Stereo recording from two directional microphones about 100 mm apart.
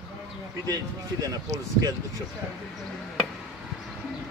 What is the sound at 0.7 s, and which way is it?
A man's voice, 40° right (ahead or behind).